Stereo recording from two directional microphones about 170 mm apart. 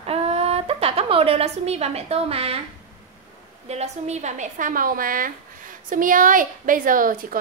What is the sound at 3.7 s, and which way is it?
A woman's voice, 40° right (ahead or behind).